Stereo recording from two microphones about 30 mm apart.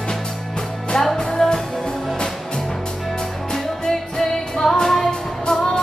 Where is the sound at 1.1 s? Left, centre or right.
Centre.